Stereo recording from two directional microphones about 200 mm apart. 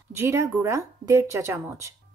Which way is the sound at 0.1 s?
15° right (ahead or behind).